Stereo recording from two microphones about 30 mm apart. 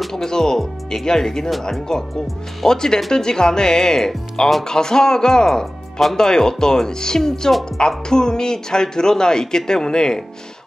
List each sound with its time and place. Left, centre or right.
0.1 s speech: centre